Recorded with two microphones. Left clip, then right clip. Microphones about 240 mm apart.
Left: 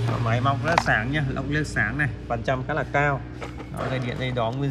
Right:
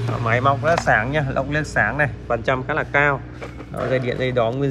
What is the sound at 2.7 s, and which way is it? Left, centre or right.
Speech, centre.